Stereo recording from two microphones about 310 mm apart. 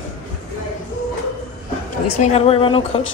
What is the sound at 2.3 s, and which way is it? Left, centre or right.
Speech, centre.